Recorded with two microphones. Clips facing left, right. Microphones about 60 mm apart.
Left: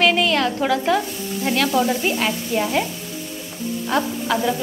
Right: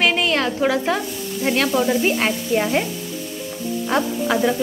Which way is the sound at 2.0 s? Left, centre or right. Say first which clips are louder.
Right 2 dB; right.